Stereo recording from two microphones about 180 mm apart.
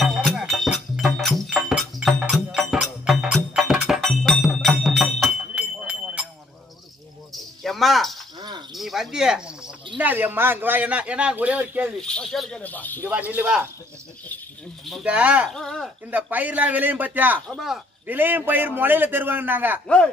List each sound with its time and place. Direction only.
0.0 s music: centre (ahead or behind)
7.6 s cricket: centre (ahead or behind)
8.4 s cricket: 25° right (ahead or behind)
8.7 s cricket: centre (ahead or behind)
9.9 s a man's voice: 10° right (ahead or behind)
12.0 s speech: 5° left (ahead or behind)
13.1 s a man's voice: 10° right (ahead or behind)
14.9 s a man's voice: 5° right (ahead or behind)
15.5 s speech: centre (ahead or behind)
16.1 s a man's voice: 10° right (ahead or behind)